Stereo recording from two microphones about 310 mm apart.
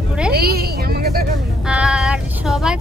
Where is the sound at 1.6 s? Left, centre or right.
Centre.